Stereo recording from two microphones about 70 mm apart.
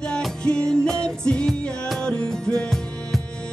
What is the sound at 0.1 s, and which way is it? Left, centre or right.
Music, centre.